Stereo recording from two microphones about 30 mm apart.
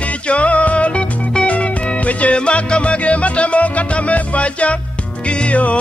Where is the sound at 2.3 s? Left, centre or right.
Left.